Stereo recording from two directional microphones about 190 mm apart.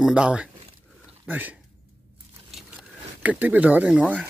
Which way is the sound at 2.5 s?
5° right (ahead or behind).